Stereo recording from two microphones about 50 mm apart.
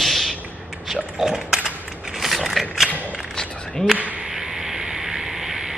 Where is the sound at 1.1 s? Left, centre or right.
Centre.